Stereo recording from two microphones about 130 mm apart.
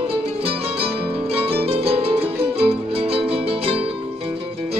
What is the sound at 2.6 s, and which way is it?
Music, 45° right (ahead or behind).